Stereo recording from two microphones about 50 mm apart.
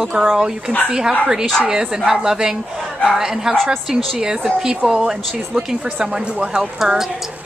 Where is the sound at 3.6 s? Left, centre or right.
Centre.